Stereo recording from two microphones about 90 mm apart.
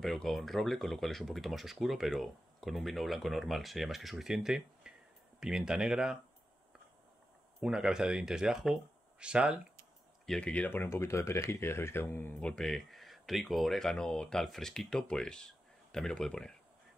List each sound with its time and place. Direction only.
0.0 s speech: 5° left (ahead or behind)
7.6 s speech: 10° right (ahead or behind)
10.2 s speech: 10° left (ahead or behind); by 12.4 s 25° left (ahead or behind)
12.4 s speech: 10° left (ahead or behind)